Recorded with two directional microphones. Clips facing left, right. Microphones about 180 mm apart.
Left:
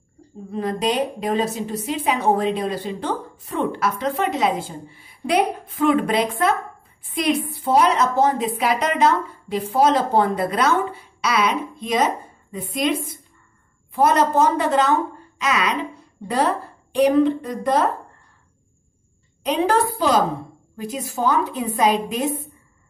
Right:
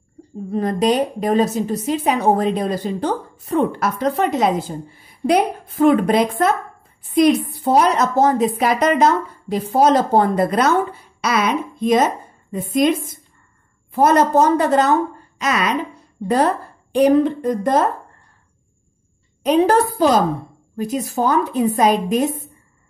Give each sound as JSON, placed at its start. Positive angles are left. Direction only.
{"t": 0.5, "sound": "a woman's voice", "side_deg": -45}
{"t": 13.9, "sound": "a woman's voice", "side_deg": -45}
{"t": 16.9, "sound": "a woman's voice", "side_deg": -45}
{"t": 19.4, "sound": "a woman's voice", "side_deg": -45}